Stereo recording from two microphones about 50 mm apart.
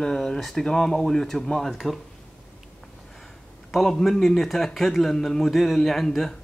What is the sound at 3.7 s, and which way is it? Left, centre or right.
Speech, centre.